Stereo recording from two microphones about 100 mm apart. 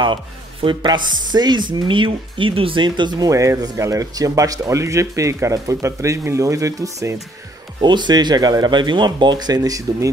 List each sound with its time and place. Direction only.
0.0 s speech: 55° right (ahead or behind)
3.3 s speech: 35° right (ahead or behind)
7.8 s speech: 50° right (ahead or behind); by 10.1 s 35° right (ahead or behind)